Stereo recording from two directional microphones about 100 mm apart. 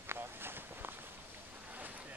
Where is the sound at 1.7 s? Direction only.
15° right (ahead or behind).